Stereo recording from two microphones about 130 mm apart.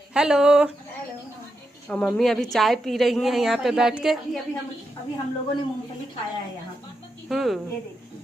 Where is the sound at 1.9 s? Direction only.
10° left (ahead or behind).